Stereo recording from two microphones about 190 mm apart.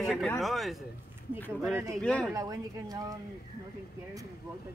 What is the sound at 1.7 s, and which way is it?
Speech, 15° right (ahead or behind).